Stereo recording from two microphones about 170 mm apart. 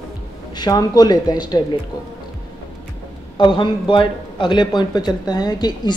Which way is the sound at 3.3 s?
30° left (ahead or behind).